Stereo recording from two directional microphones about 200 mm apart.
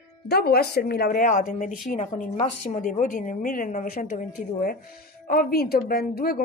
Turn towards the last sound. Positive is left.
turn(degrees=50)  # may be behind; listen again after turning